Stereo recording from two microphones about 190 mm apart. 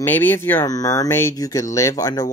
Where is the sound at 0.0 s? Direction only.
10° left (ahead or behind).